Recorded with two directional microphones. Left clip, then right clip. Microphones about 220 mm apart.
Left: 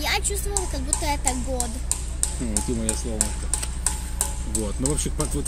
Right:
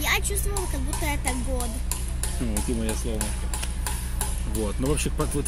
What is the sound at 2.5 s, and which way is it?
Speech, 45° left (ahead or behind).